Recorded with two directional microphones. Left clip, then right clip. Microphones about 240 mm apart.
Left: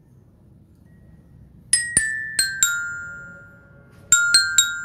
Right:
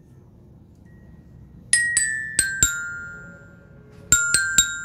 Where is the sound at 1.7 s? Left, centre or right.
Centre.